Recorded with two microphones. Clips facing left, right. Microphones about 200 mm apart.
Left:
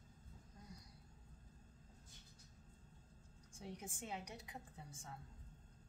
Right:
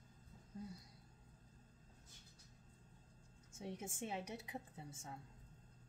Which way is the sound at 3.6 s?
25° right (ahead or behind).